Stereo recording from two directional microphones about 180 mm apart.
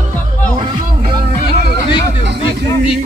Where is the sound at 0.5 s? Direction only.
25° right (ahead or behind).